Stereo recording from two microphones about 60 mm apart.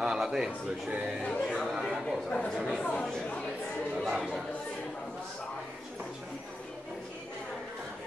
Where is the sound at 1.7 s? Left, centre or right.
Centre.